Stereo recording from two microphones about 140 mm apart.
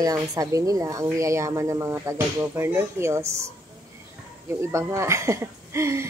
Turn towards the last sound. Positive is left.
turn(degrees=-20)  # may be behind; listen again after turning